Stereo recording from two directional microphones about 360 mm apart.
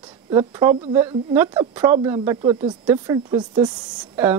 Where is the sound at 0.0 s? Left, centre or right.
Centre.